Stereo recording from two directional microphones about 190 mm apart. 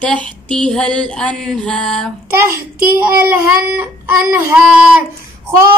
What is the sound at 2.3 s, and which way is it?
A child's voice, 15° right (ahead or behind).